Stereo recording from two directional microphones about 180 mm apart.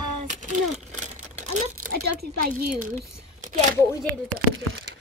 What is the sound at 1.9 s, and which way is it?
A woman's voice, 55° right (ahead or behind).